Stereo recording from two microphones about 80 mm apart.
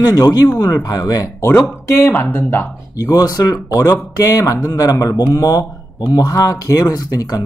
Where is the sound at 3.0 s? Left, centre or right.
Left.